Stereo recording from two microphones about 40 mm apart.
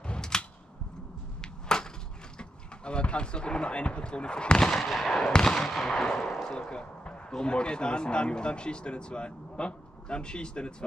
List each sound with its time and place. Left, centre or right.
0.3 s a sound: centre
2.3 s speech: left
4.8 s gunshot: centre
5.2 s fireworks: centre
5.7 s gunshot: centre
6.4 s speech: centre